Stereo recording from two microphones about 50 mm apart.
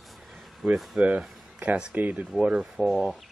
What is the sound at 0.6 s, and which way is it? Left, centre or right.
Speech, centre.